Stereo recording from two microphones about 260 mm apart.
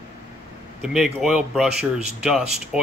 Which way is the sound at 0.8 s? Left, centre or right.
Centre.